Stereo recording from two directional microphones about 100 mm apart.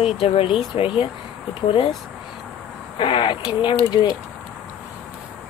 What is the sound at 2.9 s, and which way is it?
Speech, 55° left (ahead or behind).